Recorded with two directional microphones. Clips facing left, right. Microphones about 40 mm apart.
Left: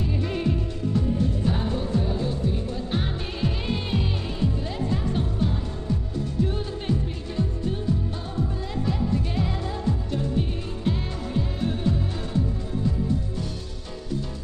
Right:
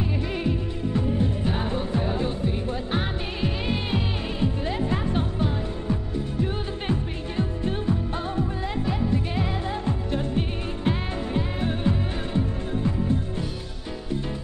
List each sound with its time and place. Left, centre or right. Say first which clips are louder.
0.0 s music: even; centre
0.9 s music: even; right
4.4 s music: right 2 dB; right
8.8 s music: left 1 dB; right
9.8 s music: even; right